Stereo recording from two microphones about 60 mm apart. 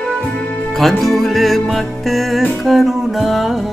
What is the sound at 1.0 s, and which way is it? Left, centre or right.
Music, centre.